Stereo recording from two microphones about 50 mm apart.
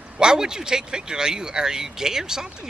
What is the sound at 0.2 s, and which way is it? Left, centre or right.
Speech, centre.